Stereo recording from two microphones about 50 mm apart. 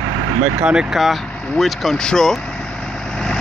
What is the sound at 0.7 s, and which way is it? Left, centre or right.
Speech, centre.